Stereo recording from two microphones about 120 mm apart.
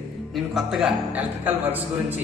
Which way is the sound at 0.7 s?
5° right (ahead or behind).